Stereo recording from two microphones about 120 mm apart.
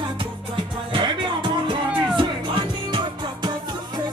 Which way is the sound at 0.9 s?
40° right (ahead or behind).